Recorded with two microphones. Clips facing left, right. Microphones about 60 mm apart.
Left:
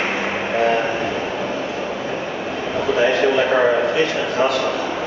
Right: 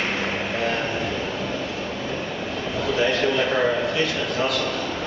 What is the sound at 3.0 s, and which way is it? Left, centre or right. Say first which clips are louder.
Speech: left 5 dB; centre.